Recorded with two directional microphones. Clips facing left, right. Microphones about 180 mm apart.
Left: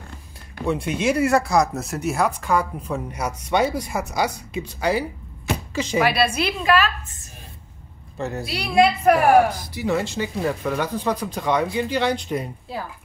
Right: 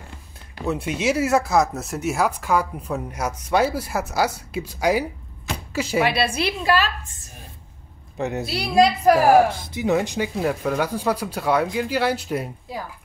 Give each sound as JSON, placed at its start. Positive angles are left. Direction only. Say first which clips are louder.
{"t": 0.6, "sound": "speech", "louder": "left 1 dB", "side_deg": -5}
{"t": 5.5, "sound": "a sound", "louder": "left 1 dB", "side_deg": -5}
{"t": 6.0, "sound": "a woman's voice", "louder": "left 1 dB", "side_deg": -25}
{"t": 8.2, "sound": "speech", "louder": "right 2 dB", "side_deg": -15}
{"t": 8.5, "sound": "a woman's voice", "louder": "even", "side_deg": -35}